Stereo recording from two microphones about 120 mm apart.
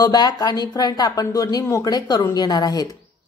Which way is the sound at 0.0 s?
30° left (ahead or behind).